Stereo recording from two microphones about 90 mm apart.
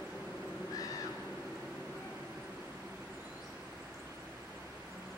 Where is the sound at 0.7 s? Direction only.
40° left (ahead or behind).